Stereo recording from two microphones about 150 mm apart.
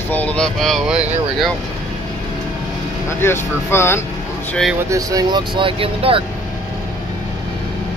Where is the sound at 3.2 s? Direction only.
15° left (ahead or behind).